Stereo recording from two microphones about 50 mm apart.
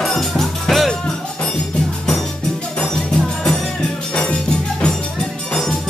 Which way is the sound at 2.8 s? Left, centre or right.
Centre.